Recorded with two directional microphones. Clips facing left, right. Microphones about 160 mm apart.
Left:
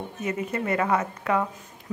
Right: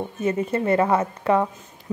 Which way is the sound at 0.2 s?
30° right (ahead or behind).